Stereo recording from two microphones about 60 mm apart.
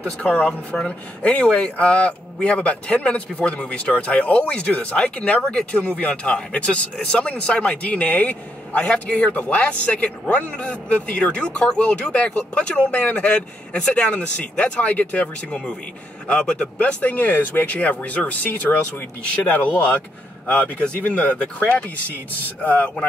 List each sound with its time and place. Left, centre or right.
0.0 s speech: left